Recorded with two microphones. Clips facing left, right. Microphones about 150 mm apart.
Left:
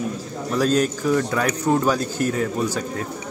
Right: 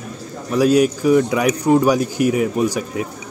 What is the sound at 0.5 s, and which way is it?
Speech, 10° right (ahead or behind).